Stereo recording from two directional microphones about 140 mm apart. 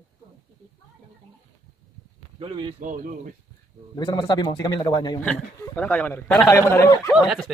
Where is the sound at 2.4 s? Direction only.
35° right (ahead or behind).